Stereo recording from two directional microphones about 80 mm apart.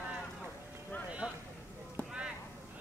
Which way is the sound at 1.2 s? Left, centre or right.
Left.